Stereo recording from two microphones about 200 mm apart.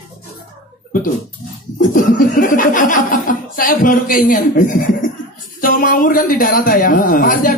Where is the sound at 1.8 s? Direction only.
45° left (ahead or behind).